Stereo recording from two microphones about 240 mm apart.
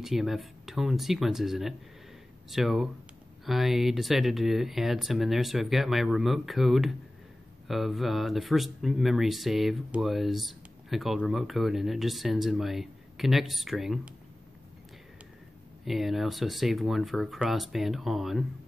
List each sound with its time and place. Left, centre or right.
0.0 s speech: centre
15.8 s speech: centre